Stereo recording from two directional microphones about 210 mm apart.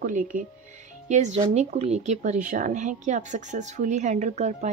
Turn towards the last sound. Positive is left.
turn(degrees=-35)  # may be behind; listen again after turning